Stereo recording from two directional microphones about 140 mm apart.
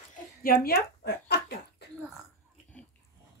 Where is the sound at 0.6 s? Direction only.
90° left.